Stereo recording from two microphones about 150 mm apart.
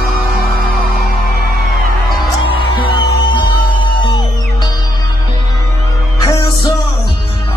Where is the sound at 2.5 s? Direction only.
35° left (ahead or behind).